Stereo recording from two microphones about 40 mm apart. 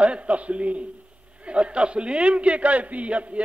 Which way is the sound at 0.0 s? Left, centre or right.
Right.